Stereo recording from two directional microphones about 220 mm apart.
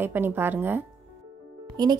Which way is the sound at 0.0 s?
10° right (ahead or behind).